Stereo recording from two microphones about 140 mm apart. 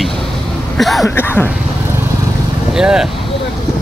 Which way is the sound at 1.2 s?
15° left (ahead or behind).